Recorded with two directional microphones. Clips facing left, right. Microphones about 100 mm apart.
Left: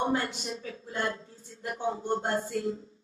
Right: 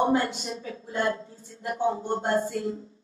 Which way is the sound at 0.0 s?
25° right (ahead or behind).